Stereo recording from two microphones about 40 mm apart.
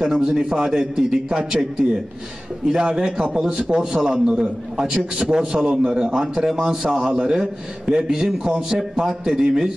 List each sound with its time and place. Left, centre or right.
0.0 s a man's voice: right